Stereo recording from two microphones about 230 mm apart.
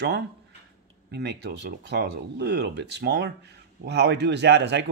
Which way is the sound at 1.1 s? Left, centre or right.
Right.